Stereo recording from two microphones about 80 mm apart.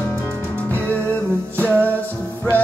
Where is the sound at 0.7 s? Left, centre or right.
Left.